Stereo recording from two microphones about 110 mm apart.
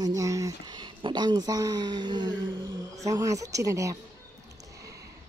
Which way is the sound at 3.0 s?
30° right (ahead or behind).